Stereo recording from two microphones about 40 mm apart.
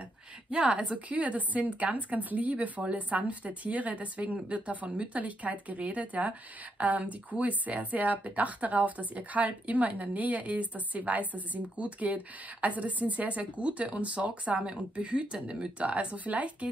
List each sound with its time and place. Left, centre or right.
0.5 s speech: right